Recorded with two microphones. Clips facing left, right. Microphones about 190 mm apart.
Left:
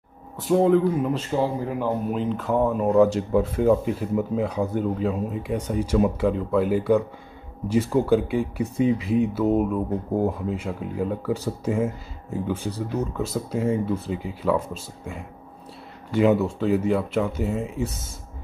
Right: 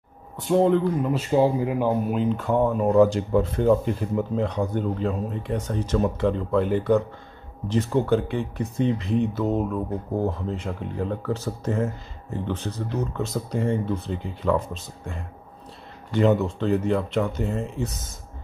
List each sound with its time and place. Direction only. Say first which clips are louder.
0.4 s speech: left 1 dB; centre (ahead or behind)
1.3 s speech: right 4 dB; 15° right (ahead or behind)
2.0 s speech: right 1 dB; centre (ahead or behind)